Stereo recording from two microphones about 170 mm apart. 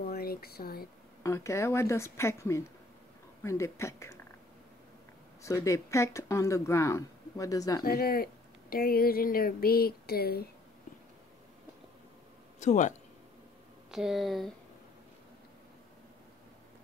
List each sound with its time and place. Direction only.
0.1 s a sound: 65° left (ahead or behind)
1.2 s speech: 15° left (ahead or behind)
5.4 s speech: 20° left (ahead or behind)
7.8 s speech: 60° left (ahead or behind)
12.5 s speech: 45° left (ahead or behind)
13.9 s speech: centre (ahead or behind)